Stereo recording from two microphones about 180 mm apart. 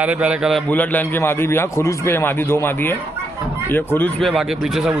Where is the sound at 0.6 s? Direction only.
10° left (ahead or behind).